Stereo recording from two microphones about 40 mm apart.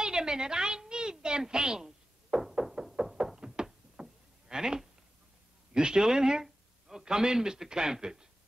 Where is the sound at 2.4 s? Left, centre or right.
Centre.